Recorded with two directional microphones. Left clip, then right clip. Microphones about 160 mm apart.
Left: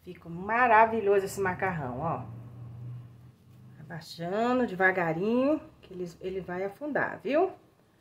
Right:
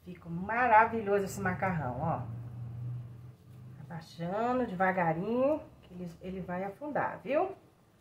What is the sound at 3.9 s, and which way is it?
Speech, 80° left.